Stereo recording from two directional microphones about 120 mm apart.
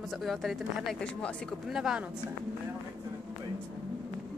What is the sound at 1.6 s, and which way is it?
Speech, 5° right (ahead or behind).